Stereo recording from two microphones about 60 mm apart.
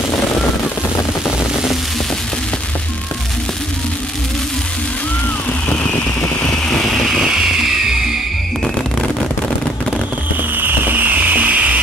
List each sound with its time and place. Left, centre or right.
10.6 s music: right